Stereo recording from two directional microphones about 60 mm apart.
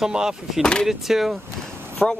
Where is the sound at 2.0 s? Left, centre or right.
Centre.